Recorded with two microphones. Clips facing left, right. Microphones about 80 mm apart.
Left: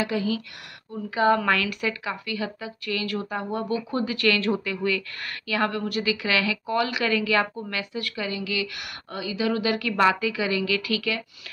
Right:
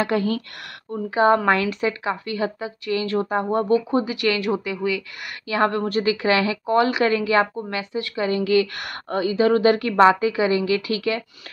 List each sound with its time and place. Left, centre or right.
0.0 s speech: right
1.1 s a woman's voice: right
3.2 s a woman's voice: right; by 5.0 s centre
5.5 s a woman's voice: right
8.3 s a woman's voice: right